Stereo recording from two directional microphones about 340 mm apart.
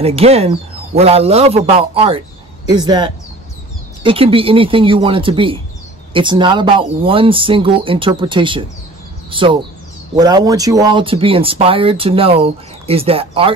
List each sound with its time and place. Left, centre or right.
0.0 s speech: centre